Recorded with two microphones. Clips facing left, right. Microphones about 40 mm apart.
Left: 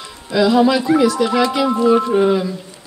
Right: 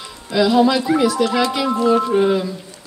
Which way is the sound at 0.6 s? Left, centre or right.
Centre.